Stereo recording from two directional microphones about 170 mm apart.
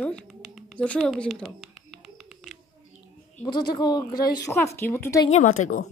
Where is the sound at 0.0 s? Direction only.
Centre (ahead or behind).